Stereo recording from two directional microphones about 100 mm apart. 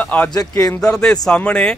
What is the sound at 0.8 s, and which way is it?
Speech, 5° left (ahead or behind).